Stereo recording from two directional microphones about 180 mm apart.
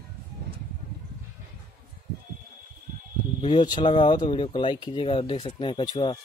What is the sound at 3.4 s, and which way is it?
Speech, 25° left (ahead or behind).